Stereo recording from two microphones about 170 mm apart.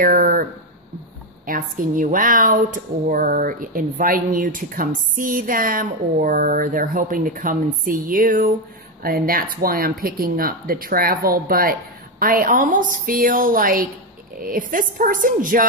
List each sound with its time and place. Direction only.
0.0 s a woman's voice: 55° right (ahead or behind)